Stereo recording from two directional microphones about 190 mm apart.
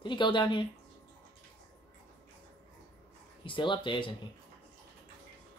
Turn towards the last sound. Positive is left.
turn(degrees=25)  # may be behind; listen again after turning